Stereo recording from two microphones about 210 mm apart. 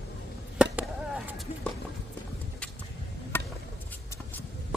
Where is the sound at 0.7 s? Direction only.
5° right (ahead or behind).